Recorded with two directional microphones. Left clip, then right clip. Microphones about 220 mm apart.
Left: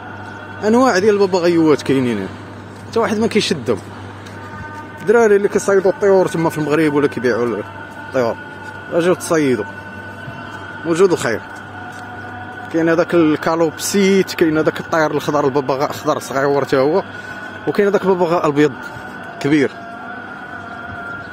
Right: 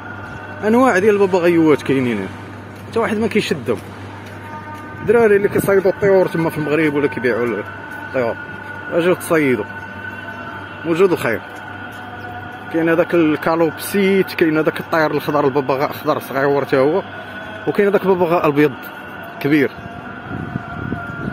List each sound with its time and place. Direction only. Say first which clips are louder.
0.6 s speech: even; 5° left (ahead or behind)
5.0 s speech: left 1 dB; 15° left (ahead or behind)
10.9 s speech: left 1 dB; 5° left (ahead or behind)
12.7 s a man's voice: left 1 dB; 10° left (ahead or behind)